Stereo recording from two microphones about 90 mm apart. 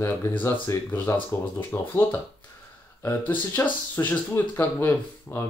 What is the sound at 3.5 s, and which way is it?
Speech, 20° left (ahead or behind).